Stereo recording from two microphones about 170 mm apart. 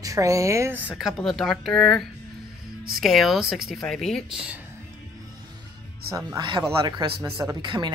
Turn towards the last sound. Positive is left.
turn(degrees=-25)  # may be behind; listen again after turning